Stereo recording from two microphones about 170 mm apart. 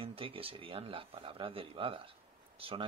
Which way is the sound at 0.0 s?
35° right (ahead or behind).